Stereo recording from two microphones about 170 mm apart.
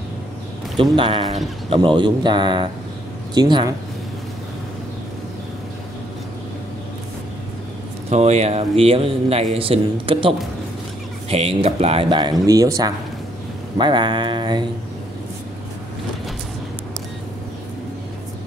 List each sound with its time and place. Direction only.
0.9 s a man's voice: 30° right (ahead or behind)
1.2 s speech: centre (ahead or behind)
1.7 s a man's voice: 30° right (ahead or behind)
8.1 s a man's voice: 40° right (ahead or behind)